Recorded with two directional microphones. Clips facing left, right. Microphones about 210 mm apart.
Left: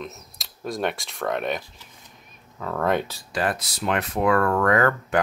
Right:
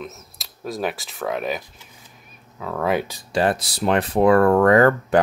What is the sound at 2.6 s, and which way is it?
Speech, 5° right (ahead or behind).